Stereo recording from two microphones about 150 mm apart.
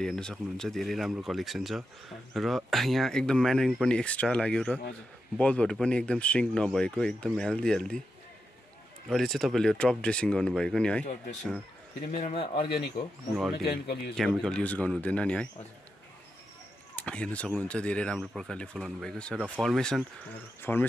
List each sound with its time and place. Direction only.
0.0 s speech: 5° left (ahead or behind)
9.1 s speech: centre (ahead or behind)
12.2 s speech: 40° left (ahead or behind)
13.7 s speech: 90° left
14.1 s speech: centre (ahead or behind)
16.9 s speech: 10° left (ahead or behind)
19.3 s speech: 10° right (ahead or behind)
19.6 s speech: 5° left (ahead or behind)